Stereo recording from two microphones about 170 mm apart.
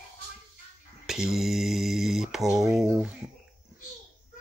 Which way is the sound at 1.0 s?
5° right (ahead or behind).